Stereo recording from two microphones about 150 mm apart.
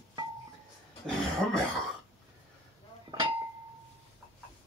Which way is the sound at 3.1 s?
25° right (ahead or behind).